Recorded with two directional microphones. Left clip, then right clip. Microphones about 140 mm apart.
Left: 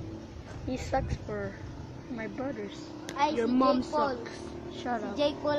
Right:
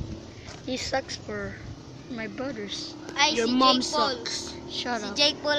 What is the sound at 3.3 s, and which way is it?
A woman's voice, 15° right (ahead or behind).